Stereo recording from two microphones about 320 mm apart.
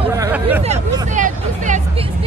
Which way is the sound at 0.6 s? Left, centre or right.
Right.